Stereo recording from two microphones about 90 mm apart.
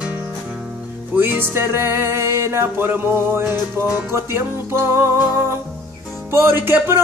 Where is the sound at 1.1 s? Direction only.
20° right (ahead or behind).